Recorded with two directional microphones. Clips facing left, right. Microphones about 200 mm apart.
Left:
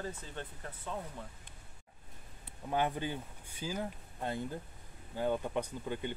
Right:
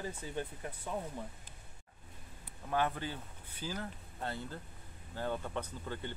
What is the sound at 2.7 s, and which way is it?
Speech, 15° left (ahead or behind).